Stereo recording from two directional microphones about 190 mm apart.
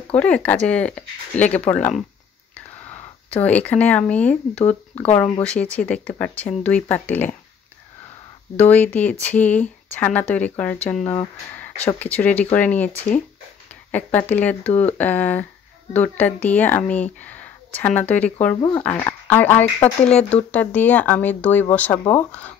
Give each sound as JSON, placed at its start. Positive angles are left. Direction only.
{"t": 0.1, "sound": "speech", "side_deg": 5}
{"t": 3.3, "sound": "speech", "side_deg": 10}
{"t": 8.5, "sound": "speech", "side_deg": 10}
{"t": 11.5, "sound": "a sound", "side_deg": 10}
{"t": 12.0, "sound": "speech", "side_deg": 10}
{"t": 13.9, "sound": "speech", "side_deg": 10}